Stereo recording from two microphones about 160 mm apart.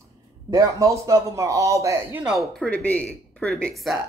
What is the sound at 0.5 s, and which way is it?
A man's voice, 20° right (ahead or behind).